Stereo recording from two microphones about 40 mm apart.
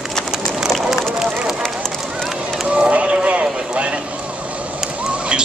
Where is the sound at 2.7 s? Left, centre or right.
Right.